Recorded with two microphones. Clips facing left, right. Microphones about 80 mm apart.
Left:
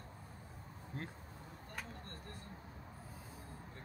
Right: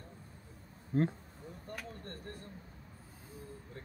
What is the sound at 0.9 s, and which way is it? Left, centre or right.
Speech, right.